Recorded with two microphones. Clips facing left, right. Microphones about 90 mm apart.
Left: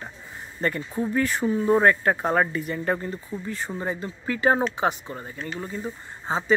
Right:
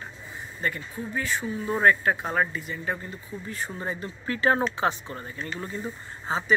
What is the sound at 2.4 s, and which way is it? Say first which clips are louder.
Speech: left 4 dB; 55° left (ahead or behind).